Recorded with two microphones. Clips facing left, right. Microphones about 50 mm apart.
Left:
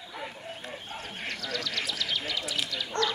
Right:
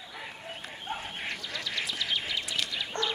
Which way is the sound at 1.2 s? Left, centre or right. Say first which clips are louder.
Left 2 dB; centre.